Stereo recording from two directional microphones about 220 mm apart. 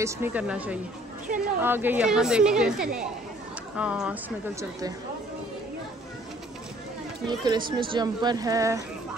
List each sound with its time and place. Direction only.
0.0 s a woman's voice: 10° right (ahead or behind)
7.2 s speech: 20° right (ahead or behind)